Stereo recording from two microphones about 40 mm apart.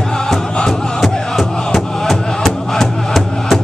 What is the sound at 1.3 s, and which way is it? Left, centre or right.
Music, centre.